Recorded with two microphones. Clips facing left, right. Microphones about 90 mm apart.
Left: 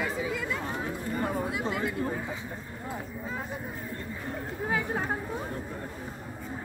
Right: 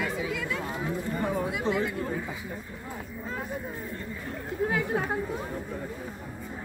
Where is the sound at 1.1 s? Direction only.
Centre (ahead or behind).